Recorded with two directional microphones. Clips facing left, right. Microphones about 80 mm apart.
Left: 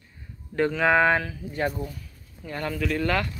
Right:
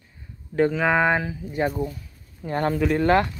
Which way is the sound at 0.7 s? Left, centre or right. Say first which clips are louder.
Left 4 dB; centre.